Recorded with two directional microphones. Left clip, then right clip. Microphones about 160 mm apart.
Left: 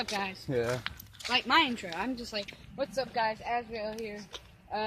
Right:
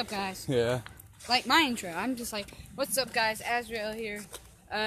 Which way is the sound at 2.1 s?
35° right (ahead or behind).